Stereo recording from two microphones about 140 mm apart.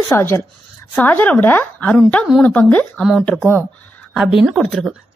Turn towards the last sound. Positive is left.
turn(degrees=-5)  # may be behind; listen again after turning